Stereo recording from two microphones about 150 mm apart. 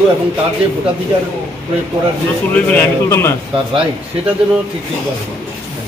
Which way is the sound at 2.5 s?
10° left (ahead or behind).